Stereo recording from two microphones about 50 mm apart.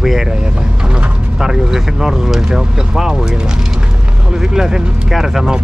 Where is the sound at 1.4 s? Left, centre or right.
Centre.